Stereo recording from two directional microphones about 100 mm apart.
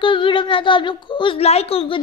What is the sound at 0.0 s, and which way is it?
Speech, 55° left (ahead or behind).